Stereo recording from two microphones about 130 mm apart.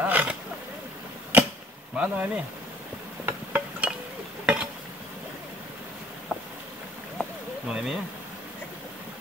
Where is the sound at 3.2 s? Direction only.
10° right (ahead or behind).